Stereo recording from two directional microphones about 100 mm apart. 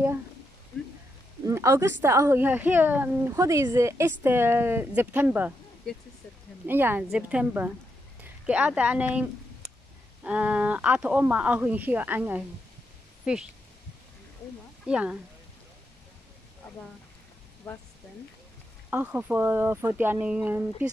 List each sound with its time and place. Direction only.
1.4 s speech: 30° right (ahead or behind)
5.9 s speech: 5° left (ahead or behind)
6.6 s speech: 20° right (ahead or behind)
7.1 s speech: 10° right (ahead or behind)
14.9 s speech: 10° right (ahead or behind)
17.6 s speech: 25° left (ahead or behind)
18.9 s speech: 15° right (ahead or behind)